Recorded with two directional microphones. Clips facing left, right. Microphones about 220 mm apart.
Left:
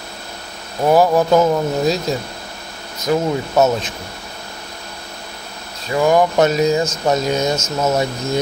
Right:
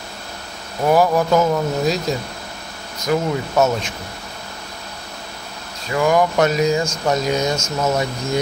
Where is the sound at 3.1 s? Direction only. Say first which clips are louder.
Left 2 dB; 20° left (ahead or behind).